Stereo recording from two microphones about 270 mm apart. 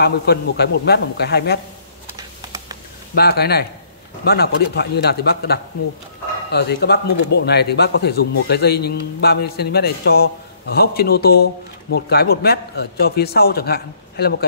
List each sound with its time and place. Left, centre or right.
0.0 s a man's voice: left
3.2 s a man's voice: left